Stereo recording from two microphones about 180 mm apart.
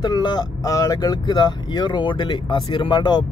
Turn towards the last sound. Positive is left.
turn(degrees=25)  # may be behind; listen again after turning